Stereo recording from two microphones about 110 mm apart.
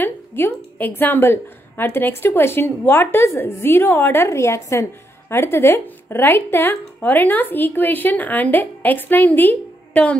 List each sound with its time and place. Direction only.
0.0 s a woman's voice: 20° left (ahead or behind)